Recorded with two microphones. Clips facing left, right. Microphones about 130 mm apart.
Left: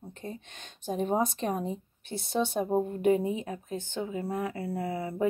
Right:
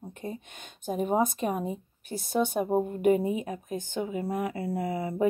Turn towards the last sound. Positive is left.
turn(degrees=-15)  # may be behind; listen again after turning